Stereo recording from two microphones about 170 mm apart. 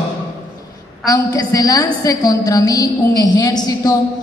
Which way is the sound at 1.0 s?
20° left (ahead or behind).